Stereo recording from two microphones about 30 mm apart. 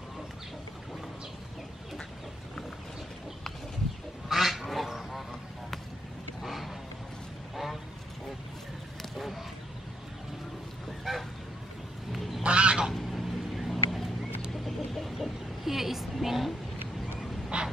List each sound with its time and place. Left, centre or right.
4.3 s duck: centre
6.4 s a sound: centre
7.5 s vehicle: centre
9.1 s a sound: centre
11.1 s goose: centre
12.4 s goose: right
12.9 s a sound: centre
14.5 s chicken: centre
17.5 s dog: right